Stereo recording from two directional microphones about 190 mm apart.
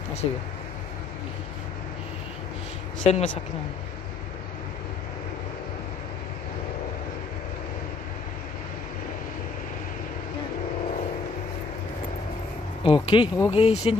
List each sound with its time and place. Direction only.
0.2 s speech: 30° left (ahead or behind)
3.0 s speech: 35° left (ahead or behind)
12.8 s speech: 25° left (ahead or behind)